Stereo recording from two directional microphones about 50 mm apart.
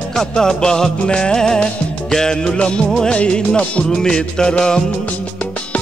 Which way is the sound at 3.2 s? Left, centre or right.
Left.